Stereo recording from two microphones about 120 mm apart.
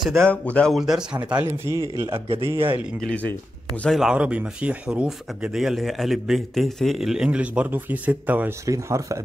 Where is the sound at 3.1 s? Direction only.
10° left (ahead or behind).